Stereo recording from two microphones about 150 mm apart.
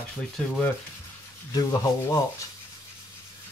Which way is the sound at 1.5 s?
25° left (ahead or behind).